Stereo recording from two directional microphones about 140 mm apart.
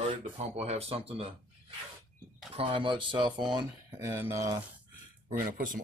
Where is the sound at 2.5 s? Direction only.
35° right (ahead or behind).